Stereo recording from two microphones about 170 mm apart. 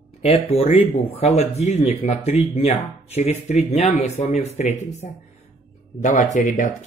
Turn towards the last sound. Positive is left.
turn(degrees=50)  # may be behind; listen again after turning